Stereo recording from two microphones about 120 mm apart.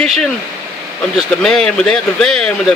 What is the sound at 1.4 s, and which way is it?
Speech, 5° left (ahead or behind).